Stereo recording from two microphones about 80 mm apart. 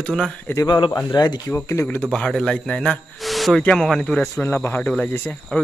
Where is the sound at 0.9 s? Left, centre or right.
Left.